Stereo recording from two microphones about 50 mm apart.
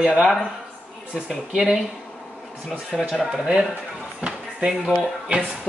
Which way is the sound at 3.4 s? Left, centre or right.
Right.